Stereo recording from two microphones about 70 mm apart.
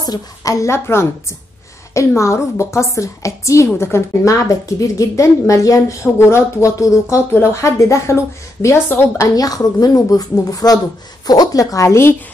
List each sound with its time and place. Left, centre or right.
0.0 s a woman's voice: left
0.7 s a woman's voice: left
6.1 s a woman's voice: left
8.8 s speech: left
9.3 s a woman's voice: left